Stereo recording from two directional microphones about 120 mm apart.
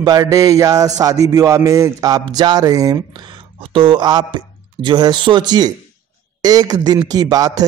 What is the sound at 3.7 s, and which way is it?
Speech, 45° right (ahead or behind).